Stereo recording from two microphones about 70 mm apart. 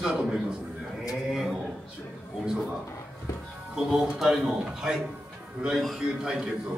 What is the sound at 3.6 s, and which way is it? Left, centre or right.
Speech, centre.